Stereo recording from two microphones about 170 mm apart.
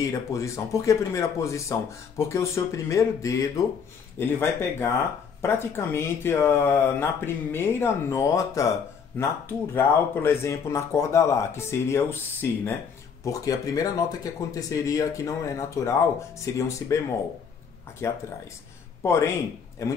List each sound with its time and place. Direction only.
0.0 s speech: 20° left (ahead or behind)
18.0 s speech: 15° left (ahead or behind)